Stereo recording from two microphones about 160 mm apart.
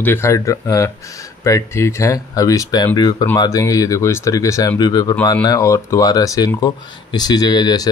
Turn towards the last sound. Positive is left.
turn(degrees=25)  # may be behind; listen again after turning